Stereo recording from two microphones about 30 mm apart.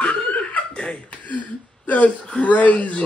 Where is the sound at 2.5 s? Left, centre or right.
Left.